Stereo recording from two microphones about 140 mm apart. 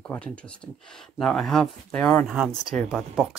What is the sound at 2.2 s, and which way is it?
Speech, 5° right (ahead or behind).